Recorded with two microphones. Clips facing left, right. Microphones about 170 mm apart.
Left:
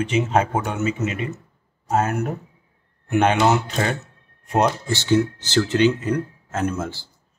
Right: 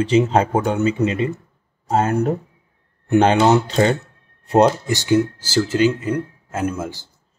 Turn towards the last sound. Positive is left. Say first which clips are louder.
# right 1 dB
turn(degrees=-15)  # may be behind; listen again after turning